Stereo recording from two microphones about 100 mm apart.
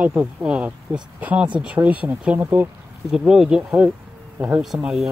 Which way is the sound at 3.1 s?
5° right (ahead or behind).